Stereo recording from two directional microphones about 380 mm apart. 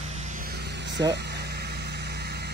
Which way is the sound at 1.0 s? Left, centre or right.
Right.